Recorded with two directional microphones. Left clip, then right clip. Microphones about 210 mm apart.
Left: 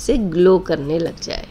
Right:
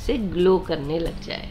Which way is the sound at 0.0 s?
30° left (ahead or behind).